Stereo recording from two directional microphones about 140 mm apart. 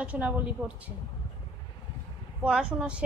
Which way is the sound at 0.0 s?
10° right (ahead or behind).